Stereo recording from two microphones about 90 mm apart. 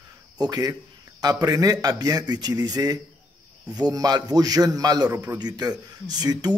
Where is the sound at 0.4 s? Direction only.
45° right (ahead or behind).